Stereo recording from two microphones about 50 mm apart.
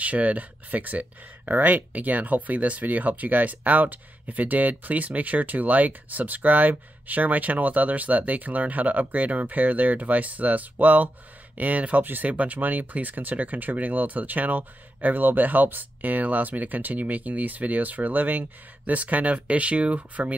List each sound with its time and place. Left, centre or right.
0.0 s speech: right